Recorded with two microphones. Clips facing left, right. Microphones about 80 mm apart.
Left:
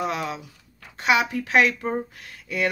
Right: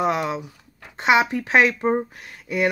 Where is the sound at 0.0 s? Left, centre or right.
Right.